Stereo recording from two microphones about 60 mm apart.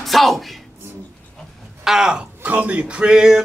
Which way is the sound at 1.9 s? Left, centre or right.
Centre.